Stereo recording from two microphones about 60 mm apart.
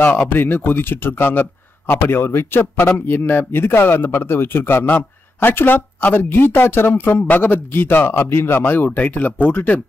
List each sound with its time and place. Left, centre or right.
0.0 s speech: left